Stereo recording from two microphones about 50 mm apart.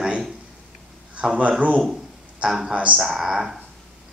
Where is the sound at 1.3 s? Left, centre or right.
Right.